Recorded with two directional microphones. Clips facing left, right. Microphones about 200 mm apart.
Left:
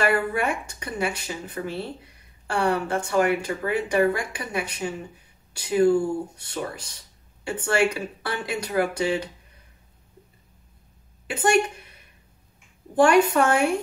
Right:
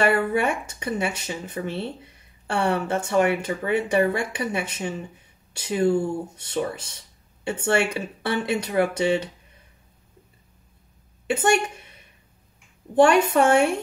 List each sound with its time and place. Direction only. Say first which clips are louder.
0.0 s speech: right 2 dB; 25° right (ahead or behind)
11.2 s a woman's voice: right 2 dB; 25° right (ahead or behind)
12.9 s speech: right 1 dB; 25° right (ahead or behind)